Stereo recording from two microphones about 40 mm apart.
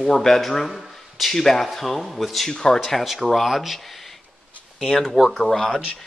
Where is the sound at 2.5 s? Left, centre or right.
Centre.